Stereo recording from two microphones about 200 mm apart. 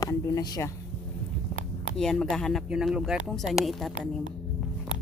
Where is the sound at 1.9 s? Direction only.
Centre (ahead or behind).